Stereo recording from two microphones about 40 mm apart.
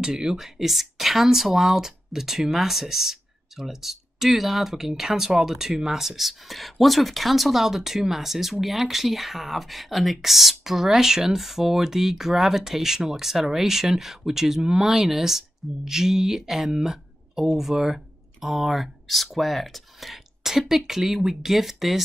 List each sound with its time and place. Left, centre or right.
0.0 s speech: centre
0.6 s speech: centre